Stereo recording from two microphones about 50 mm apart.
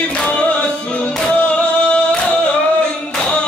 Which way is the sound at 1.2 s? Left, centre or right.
Left.